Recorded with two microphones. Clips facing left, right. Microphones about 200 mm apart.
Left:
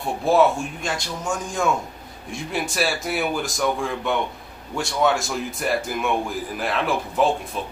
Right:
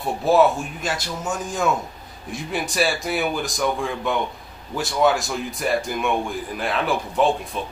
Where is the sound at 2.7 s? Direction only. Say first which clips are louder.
Right 4 dB; centre (ahead or behind).